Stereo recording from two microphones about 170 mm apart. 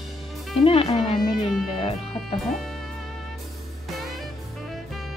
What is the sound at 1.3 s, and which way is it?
Speech, centre (ahead or behind).